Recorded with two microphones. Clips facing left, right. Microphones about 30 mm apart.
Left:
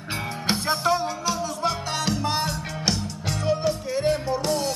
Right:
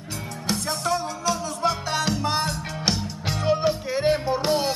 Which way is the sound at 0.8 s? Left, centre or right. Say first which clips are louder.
Even; centre.